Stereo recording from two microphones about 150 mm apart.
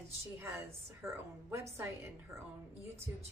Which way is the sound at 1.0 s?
15° right (ahead or behind).